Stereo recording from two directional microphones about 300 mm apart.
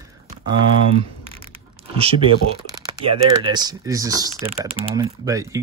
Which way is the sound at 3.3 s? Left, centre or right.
Centre.